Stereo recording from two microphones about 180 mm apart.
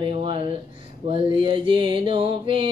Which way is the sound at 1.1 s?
30° right (ahead or behind).